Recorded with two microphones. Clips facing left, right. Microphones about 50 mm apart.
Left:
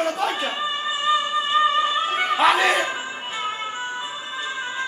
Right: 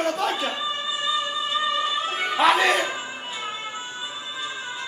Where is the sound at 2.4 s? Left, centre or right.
Centre.